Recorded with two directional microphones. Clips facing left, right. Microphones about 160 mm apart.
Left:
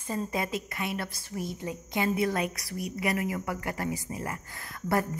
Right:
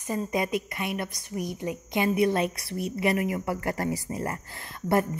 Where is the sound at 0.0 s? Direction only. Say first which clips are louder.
Right 3 dB; 15° right (ahead or behind).